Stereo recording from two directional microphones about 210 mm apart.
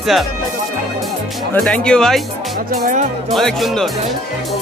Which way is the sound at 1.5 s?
5° left (ahead or behind).